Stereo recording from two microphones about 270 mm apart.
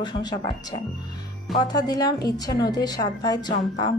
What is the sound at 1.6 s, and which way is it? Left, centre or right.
A woman's voice, centre.